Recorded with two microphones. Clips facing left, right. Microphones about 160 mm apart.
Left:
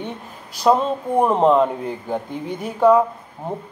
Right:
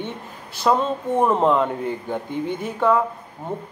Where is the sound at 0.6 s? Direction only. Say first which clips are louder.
Left 3 dB; 15° left (ahead or behind).